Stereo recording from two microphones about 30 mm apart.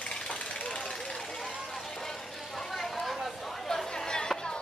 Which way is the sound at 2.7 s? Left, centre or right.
Centre.